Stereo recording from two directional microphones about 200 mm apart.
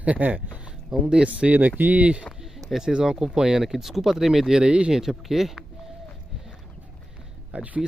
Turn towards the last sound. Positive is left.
turn(degrees=-5)  # may be behind; listen again after turning